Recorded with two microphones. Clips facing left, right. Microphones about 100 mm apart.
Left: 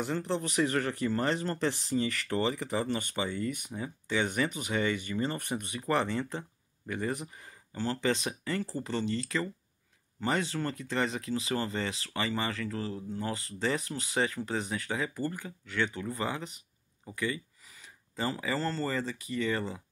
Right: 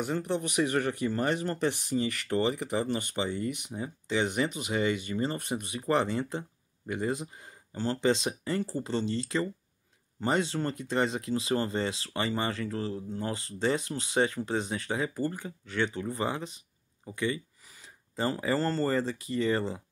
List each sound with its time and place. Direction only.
0.0 s speech: 15° right (ahead or behind)
18.1 s speech: 35° right (ahead or behind)